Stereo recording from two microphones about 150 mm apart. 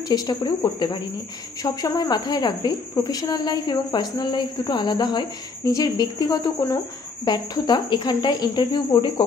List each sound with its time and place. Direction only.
0.1 s a woman's voice: 30° left (ahead or behind)